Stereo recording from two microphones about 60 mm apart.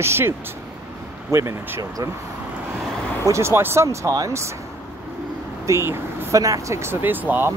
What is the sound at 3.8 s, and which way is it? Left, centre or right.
Speech, right.